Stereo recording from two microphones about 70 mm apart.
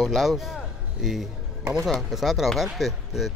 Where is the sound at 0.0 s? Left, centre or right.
Centre.